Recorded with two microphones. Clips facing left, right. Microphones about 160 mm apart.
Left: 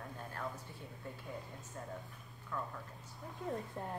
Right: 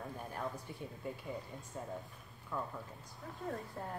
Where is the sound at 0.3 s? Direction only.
15° right (ahead or behind).